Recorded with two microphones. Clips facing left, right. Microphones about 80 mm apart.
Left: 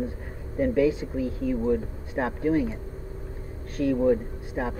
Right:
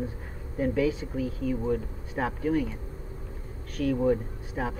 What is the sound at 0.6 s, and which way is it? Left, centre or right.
Speech, centre.